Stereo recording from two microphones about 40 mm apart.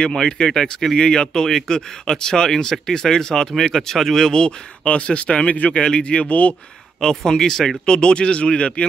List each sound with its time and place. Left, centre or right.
0.2 s speech: centre
4.8 s speech: left
6.2 s speech: left
7.0 s speech: centre
7.8 s speech: left